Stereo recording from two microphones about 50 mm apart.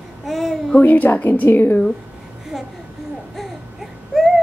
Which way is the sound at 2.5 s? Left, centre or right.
Centre.